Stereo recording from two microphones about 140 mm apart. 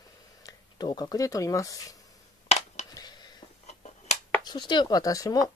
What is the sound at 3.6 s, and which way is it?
Finger snapping, 55° left (ahead or behind).